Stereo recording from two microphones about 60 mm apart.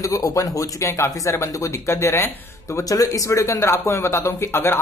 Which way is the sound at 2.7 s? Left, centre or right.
Left.